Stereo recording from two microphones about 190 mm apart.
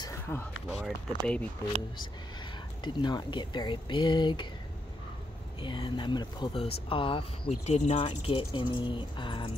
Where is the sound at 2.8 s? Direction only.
25° left (ahead or behind).